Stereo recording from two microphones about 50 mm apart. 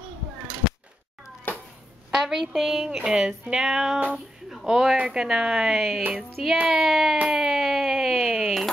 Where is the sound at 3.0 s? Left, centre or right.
Centre.